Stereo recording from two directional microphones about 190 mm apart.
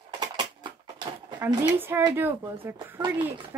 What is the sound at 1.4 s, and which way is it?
Speech, 10° right (ahead or behind).